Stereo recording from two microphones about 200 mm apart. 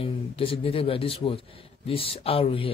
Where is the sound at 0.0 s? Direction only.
30° left (ahead or behind).